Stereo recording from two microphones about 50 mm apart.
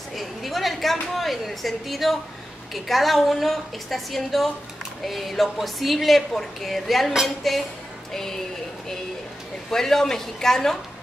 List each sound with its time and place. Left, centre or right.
0.1 s a sound: centre
1.1 s a woman's voice: centre
8.1 s music: centre
9.7 s speech: centre